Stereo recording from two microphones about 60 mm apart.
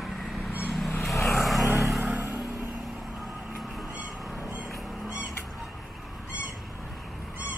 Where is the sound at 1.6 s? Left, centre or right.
Right.